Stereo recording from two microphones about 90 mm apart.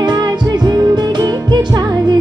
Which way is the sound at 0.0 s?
50° right (ahead or behind).